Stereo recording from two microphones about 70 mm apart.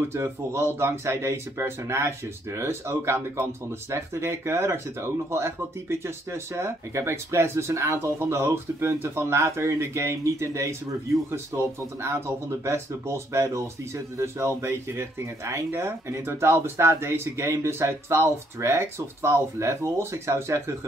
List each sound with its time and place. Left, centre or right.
0.1 s speech: right